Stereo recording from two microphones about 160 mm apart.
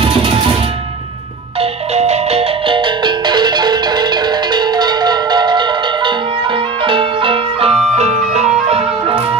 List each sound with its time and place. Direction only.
1.6 s music: 40° right (ahead or behind)